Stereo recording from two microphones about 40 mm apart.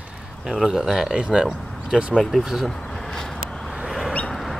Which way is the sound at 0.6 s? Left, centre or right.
Centre.